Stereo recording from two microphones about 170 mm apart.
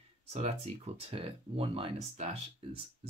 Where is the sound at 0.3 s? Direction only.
40° right (ahead or behind).